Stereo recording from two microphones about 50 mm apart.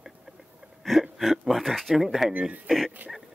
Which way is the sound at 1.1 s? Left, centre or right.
Centre.